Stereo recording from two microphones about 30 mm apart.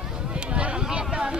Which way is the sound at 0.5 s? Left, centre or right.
Right.